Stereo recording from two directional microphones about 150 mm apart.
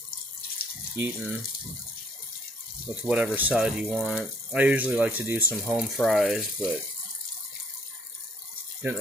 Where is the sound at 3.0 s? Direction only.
10° right (ahead or behind).